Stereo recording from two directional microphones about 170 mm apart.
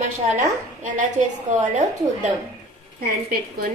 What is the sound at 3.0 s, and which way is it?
Speech, 65° right (ahead or behind).